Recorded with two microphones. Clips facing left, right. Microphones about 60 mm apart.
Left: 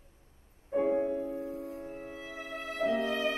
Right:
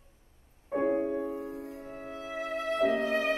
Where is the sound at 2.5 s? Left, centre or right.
Right.